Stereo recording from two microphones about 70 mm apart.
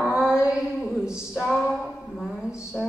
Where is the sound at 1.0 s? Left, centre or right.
Centre.